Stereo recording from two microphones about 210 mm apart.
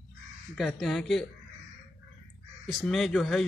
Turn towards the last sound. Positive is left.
turn(degrees=0)  # may be behind; listen again after turning